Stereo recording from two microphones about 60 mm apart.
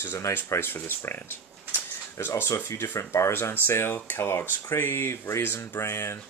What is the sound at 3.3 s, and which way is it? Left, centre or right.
Speech, left.